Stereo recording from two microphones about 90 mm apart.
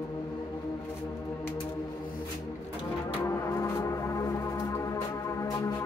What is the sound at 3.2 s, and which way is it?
Music, 35° left (ahead or behind).